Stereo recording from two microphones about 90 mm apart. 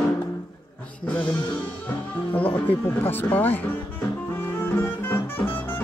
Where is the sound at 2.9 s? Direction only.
20° left (ahead or behind).